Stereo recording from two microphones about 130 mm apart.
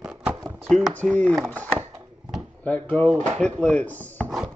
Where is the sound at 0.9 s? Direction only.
10° left (ahead or behind).